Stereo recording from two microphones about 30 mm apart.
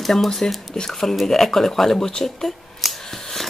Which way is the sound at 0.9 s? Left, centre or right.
Centre.